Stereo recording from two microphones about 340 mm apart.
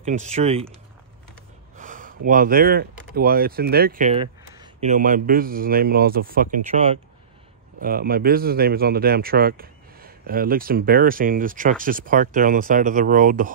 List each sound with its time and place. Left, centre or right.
0.0 s speech: right
1.8 s speech: right